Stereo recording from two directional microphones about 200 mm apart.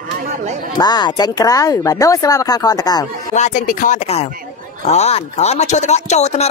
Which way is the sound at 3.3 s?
40° left (ahead or behind).